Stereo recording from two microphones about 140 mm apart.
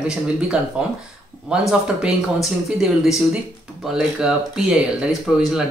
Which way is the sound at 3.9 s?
5° right (ahead or behind).